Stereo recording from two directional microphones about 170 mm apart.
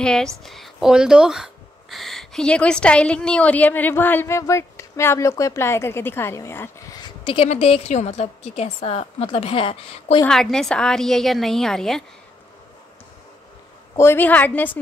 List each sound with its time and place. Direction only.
0.0 s a woman's voice: 5° left (ahead or behind)
7.0 s a woman's voice: 30° left (ahead or behind)
10.2 s a woman's voice: 5° left (ahead or behind)
13.9 s speech: 15° left (ahead or behind)